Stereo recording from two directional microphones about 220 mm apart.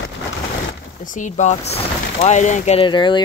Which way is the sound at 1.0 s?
35° left (ahead or behind).